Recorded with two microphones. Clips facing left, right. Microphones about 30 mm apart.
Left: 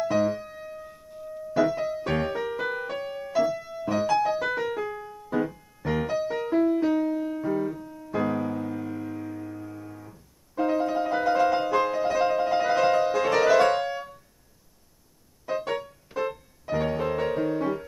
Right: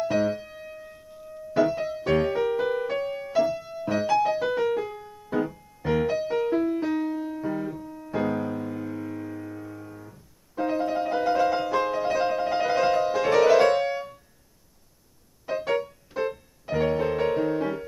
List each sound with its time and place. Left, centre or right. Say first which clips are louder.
0.1 s keyboard: left 1 dB; centre
1.6 s music: right 1 dB; centre
15.5 s music: even; centre
16.7 s music: right 2 dB; centre